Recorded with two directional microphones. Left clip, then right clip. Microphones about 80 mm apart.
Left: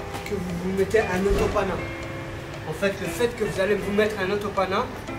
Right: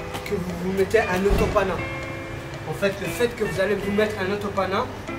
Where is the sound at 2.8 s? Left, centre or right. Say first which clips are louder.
Right 1 dB; centre.